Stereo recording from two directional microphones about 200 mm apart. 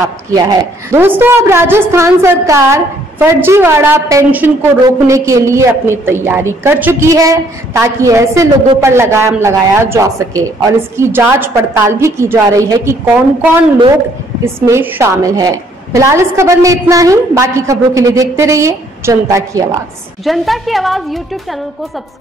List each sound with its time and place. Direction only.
0.8 s a woman's voice: 10° right (ahead or behind)
20.2 s a woman's voice: centre (ahead or behind)